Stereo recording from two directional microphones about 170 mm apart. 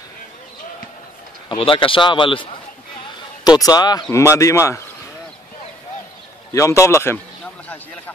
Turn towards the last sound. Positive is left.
turn(degrees=15)  # may be behind; listen again after turning